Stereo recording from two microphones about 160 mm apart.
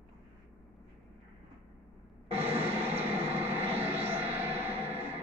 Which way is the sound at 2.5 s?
15° right (ahead or behind).